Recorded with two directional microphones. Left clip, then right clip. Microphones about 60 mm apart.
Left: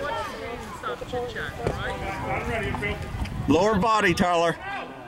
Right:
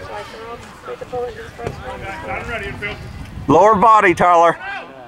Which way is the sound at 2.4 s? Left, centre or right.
Right.